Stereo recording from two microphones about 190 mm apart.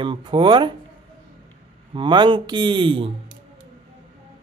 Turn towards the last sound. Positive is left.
turn(degrees=-25)  # may be behind; listen again after turning